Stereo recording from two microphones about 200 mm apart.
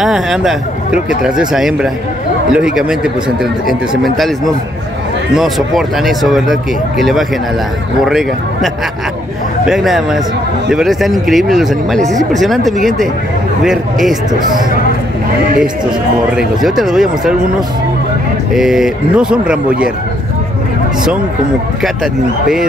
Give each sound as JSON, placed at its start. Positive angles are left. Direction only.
{"t": 0.0, "sound": "speech", "side_deg": 0}
{"t": 5.3, "sound": "speech", "side_deg": 0}
{"t": 12.7, "sound": "speech", "side_deg": -40}
{"t": 13.7, "sound": "speech", "side_deg": 0}
{"t": 15.6, "sound": "speech", "side_deg": -5}
{"t": 21.8, "sound": "speech", "side_deg": 0}